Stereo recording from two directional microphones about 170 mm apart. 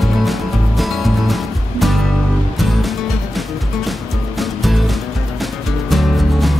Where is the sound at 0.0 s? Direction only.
Centre (ahead or behind).